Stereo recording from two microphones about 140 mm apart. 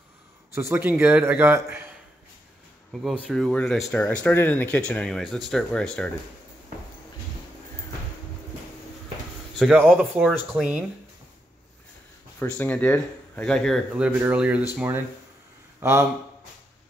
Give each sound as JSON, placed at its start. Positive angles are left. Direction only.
{"t": 0.6, "sound": "a man's voice", "side_deg": -15}
{"t": 2.9, "sound": "speech", "side_deg": 0}
{"t": 9.6, "sound": "a man's voice", "side_deg": -5}
{"t": 12.4, "sound": "speech", "side_deg": 15}
{"t": 13.9, "sound": "a man's voice", "side_deg": -10}
{"t": 15.8, "sound": "a man's voice", "side_deg": -15}